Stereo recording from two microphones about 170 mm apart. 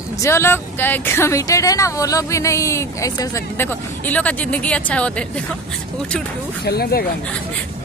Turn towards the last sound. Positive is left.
turn(degrees=65)  # may be behind; listen again after turning